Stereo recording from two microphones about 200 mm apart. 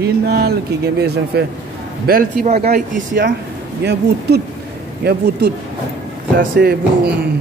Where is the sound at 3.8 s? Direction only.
55° right (ahead or behind).